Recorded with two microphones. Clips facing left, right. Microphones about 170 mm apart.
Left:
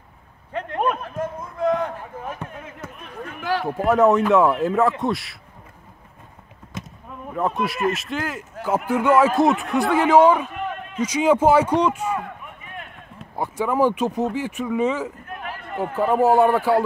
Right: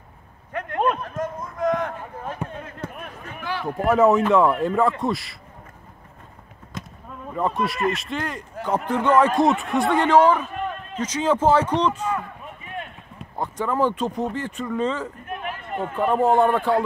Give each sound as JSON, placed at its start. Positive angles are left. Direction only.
{"t": 0.5, "sound": "a sound", "side_deg": 25}
{"t": 2.3, "sound": "basketball bounce", "side_deg": -30}
{"t": 3.6, "sound": "a man's voice", "side_deg": 0}
{"t": 7.2, "sound": "a man's voice", "side_deg": 0}
{"t": 13.2, "sound": "speech", "side_deg": 10}
{"t": 15.2, "sound": "a sound", "side_deg": -20}
{"t": 15.8, "sound": "a man's voice", "side_deg": 10}